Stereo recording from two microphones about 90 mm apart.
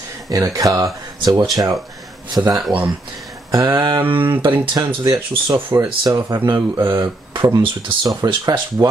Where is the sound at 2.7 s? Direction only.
45° right (ahead or behind).